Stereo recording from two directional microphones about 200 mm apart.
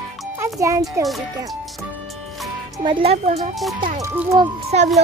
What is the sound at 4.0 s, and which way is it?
Music, 15° right (ahead or behind).